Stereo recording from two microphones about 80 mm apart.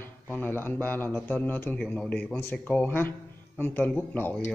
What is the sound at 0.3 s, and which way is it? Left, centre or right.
Speech, left.